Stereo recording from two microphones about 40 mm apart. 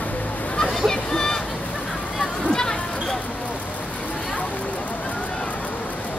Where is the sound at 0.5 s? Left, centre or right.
Centre.